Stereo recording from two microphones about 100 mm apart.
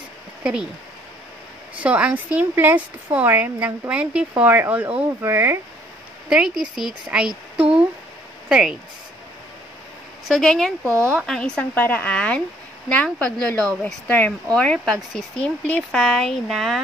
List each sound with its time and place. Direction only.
0.4 s speech: 10° right (ahead or behind)
1.8 s speech: 10° right (ahead or behind)
6.2 s speech: 5° right (ahead or behind)
10.2 s speech: 5° left (ahead or behind)
10.9 s speech: 30° right (ahead or behind)
11.2 s speech: 5° left (ahead or behind)
11.7 s speech: 15° left (ahead or behind); by 16.8 s centre (ahead or behind)